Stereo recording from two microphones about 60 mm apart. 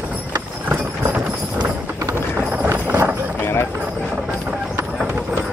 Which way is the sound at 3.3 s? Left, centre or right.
Left.